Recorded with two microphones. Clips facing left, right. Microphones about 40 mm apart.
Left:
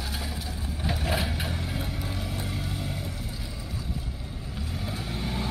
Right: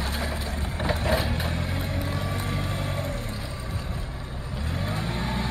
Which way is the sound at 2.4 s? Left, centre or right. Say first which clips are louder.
Right 4 dB; right.